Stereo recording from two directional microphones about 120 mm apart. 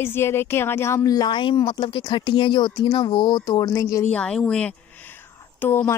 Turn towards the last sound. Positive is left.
turn(degrees=15)  # may be behind; listen again after turning